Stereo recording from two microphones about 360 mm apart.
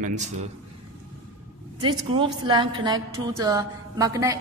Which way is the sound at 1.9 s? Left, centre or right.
Centre.